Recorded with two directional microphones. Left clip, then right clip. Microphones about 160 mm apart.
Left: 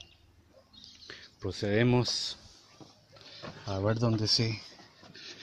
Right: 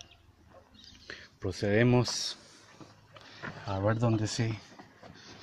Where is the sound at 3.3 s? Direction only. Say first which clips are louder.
Right 1 dB; 10° left (ahead or behind).